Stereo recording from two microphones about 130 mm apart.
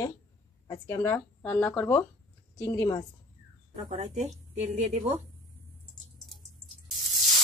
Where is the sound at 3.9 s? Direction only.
65° right (ahead or behind).